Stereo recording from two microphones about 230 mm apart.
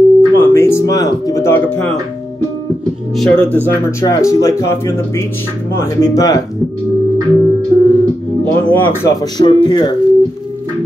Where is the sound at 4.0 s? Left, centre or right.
Centre.